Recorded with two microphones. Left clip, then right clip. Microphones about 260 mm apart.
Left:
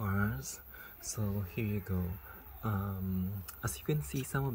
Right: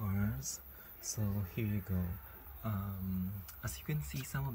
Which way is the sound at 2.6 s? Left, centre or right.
Left.